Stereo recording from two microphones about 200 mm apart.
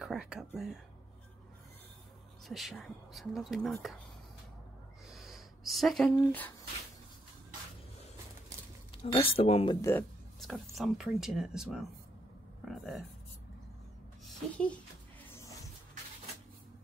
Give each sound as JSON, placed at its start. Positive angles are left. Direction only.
{"t": 0.0, "sound": "speech", "side_deg": -5}
{"t": 2.4, "sound": "speech", "side_deg": 0}
{"t": 5.1, "sound": "a sound", "side_deg": 0}
{"t": 8.9, "sound": "speech", "side_deg": 25}
{"t": 9.8, "sound": "speech", "side_deg": 15}
{"t": 10.4, "sound": "speech", "side_deg": 0}